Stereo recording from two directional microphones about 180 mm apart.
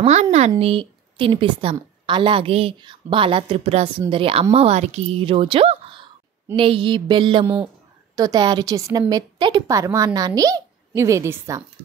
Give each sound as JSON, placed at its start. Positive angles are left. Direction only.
{"t": 0.0, "sound": "a woman's voice", "side_deg": -40}
{"t": 7.4, "sound": "a woman's voice", "side_deg": -10}
{"t": 8.2, "sound": "a woman's voice", "side_deg": -20}